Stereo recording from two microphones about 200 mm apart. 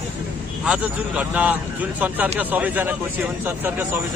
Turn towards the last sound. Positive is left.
turn(degrees=-10)  # may be behind; listen again after turning